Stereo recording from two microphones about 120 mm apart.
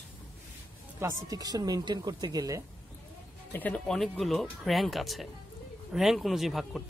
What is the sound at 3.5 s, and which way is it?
A man's voice, 15° left (ahead or behind).